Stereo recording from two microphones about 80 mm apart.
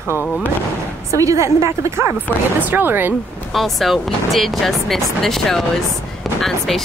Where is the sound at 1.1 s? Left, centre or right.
Right.